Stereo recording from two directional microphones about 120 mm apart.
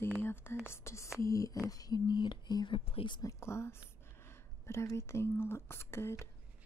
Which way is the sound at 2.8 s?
50° left (ahead or behind).